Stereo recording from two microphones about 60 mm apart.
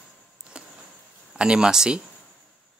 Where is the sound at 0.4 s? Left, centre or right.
Centre.